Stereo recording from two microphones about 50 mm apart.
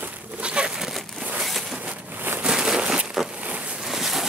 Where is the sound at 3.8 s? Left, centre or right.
Centre.